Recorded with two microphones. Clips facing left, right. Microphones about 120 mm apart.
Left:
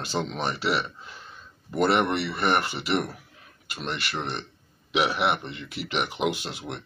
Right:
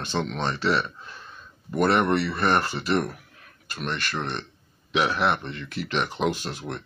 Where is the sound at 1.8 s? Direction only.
20° left (ahead or behind).